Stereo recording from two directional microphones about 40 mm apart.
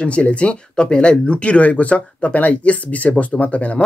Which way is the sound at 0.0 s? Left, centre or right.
Left.